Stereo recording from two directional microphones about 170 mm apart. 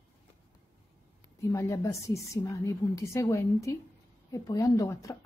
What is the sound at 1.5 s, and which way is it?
A woman's voice, 20° left (ahead or behind).